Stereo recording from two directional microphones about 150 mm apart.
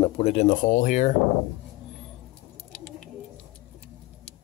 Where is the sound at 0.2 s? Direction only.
45° left (ahead or behind).